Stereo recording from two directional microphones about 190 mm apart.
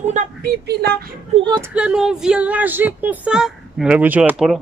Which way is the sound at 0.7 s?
60° right (ahead or behind).